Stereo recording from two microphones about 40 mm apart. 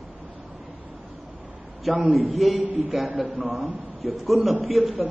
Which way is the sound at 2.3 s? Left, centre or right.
Centre.